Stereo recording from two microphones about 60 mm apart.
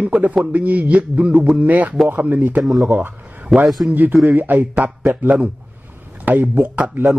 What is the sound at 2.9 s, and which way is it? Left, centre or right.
A man's voice, right.